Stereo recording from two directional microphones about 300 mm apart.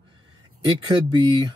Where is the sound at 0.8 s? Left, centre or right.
Centre.